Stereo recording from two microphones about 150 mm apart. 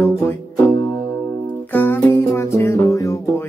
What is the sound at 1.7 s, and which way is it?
Music, 15° left (ahead or behind).